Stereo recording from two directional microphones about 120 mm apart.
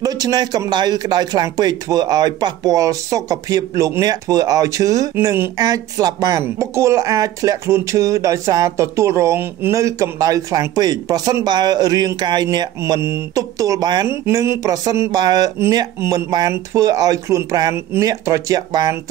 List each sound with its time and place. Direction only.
0.0 s speech: 35° right (ahead or behind)
14.0 s speech: 25° right (ahead or behind)
16.0 s speech: 20° right (ahead or behind)